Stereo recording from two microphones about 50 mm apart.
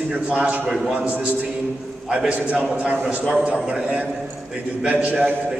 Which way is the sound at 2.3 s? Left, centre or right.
Right.